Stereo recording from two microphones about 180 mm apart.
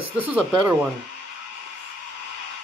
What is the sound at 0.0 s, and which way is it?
Speech, 5° right (ahead or behind).